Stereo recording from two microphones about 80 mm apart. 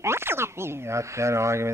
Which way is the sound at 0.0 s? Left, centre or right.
Right.